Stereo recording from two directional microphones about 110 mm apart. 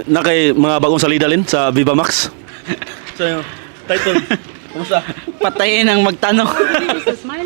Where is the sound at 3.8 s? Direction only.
15° right (ahead or behind).